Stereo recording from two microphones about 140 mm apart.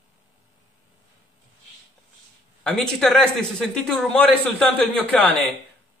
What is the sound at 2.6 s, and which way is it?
Speech, 5° left (ahead or behind).